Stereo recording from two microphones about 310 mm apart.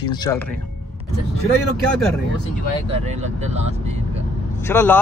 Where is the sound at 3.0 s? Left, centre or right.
Right.